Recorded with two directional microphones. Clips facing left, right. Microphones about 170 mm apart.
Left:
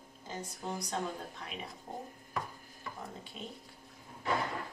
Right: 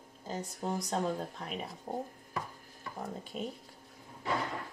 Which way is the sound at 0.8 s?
40° right (ahead or behind).